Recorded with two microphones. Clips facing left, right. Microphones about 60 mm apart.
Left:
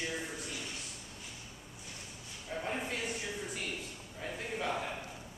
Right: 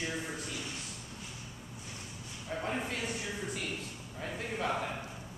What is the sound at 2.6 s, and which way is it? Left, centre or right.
Speech, centre.